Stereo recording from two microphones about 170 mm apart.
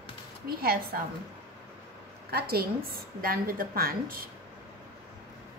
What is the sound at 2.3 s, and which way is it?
A woman's voice, 65° right (ahead or behind).